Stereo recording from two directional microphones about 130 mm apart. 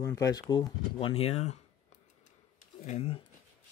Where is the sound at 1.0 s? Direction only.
50° left (ahead or behind).